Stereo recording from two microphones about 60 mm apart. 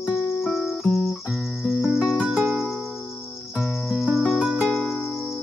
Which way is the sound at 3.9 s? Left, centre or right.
Centre.